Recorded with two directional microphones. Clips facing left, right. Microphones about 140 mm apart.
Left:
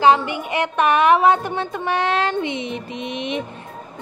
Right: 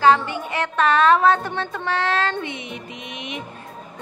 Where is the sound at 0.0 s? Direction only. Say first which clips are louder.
Left 1 dB; 15° left (ahead or behind).